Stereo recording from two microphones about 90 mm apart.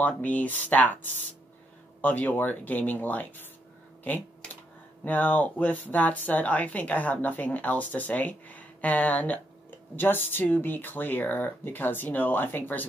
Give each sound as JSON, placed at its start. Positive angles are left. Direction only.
{"t": 0.0, "sound": "speech", "side_deg": 15}
{"t": 2.0, "sound": "speech", "side_deg": 20}
{"t": 4.0, "sound": "computer keyboard", "side_deg": 20}
{"t": 5.0, "sound": "speech", "side_deg": 20}